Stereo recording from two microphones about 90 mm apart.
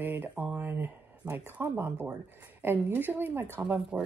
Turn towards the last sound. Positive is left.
turn(degrees=-25)  # may be behind; listen again after turning